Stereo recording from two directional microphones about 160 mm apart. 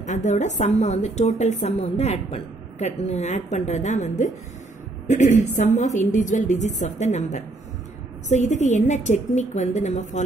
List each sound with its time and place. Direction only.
0.0 s a woman's voice: 50° left (ahead or behind)